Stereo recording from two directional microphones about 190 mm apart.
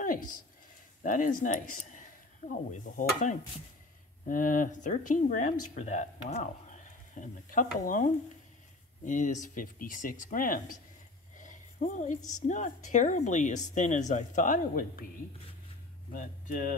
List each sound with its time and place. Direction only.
1.0 s speech: 45° left (ahead or behind)
11.3 s a sound: 40° left (ahead or behind)
12.2 s a woman's voice: 20° left (ahead or behind)
12.4 s speech: 40° left (ahead or behind)
16.1 s speech: 45° left (ahead or behind)